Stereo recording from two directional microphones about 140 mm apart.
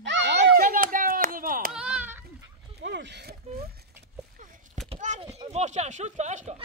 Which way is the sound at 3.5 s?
50° right (ahead or behind).